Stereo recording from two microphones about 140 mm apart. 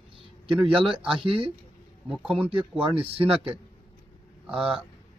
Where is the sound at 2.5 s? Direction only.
40° right (ahead or behind).